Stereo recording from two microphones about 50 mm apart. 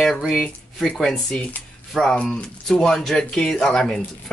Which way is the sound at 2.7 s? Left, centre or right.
Centre.